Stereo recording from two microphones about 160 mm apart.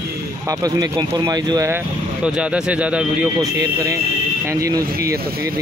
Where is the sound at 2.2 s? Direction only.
5° right (ahead or behind).